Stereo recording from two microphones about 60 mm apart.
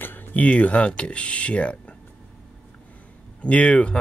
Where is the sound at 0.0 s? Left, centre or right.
Left.